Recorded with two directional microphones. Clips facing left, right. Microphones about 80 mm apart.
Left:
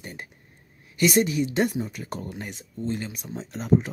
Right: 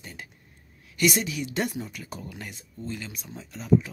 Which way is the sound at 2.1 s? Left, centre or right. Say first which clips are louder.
Left 5 dB; left.